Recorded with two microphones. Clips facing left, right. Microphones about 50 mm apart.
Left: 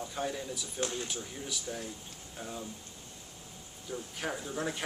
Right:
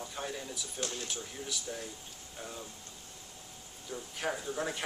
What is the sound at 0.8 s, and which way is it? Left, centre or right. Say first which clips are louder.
Speech: left 4 dB; left.